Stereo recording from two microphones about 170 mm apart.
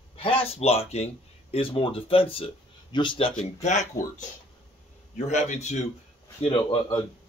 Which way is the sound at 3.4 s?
40° left (ahead or behind).